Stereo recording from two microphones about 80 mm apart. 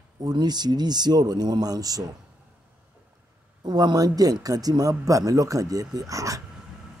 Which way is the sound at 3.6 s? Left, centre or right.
Right.